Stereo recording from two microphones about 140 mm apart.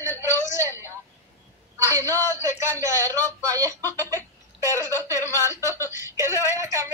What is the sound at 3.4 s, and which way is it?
Speech, 25° right (ahead or behind).